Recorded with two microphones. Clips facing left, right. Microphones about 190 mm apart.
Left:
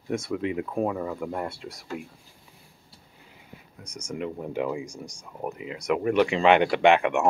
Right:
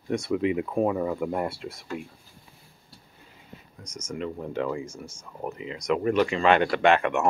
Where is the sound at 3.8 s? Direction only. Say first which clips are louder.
Even; 10° left (ahead or behind).